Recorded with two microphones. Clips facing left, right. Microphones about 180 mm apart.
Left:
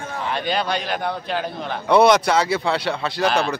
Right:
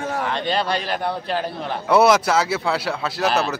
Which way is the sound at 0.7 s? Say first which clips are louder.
Right 1 dB; centre (ahead or behind).